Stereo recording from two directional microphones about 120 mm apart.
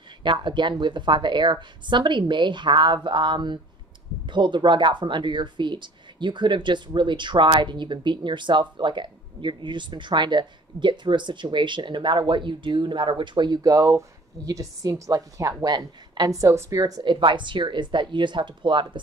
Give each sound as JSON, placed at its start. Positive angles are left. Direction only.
{"t": 0.2, "sound": "speech", "side_deg": -40}